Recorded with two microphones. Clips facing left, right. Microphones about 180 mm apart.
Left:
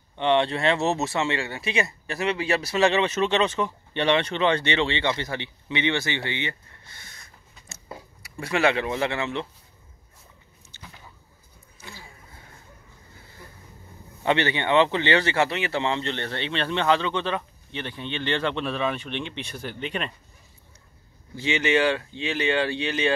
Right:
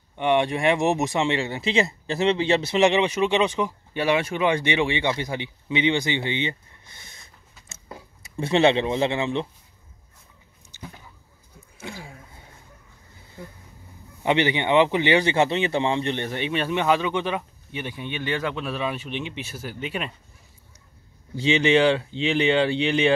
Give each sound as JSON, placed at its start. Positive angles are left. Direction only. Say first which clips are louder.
{"t": 0.1, "sound": "speech", "louder": "right 1 dB", "side_deg": -10}
{"t": 8.2, "sound": "speech", "louder": "right 4 dB", "side_deg": -25}
{"t": 14.2, "sound": "speech", "louder": "right 2 dB", "side_deg": -15}
{"t": 21.4, "sound": "speech", "louder": "right 4 dB", "side_deg": -15}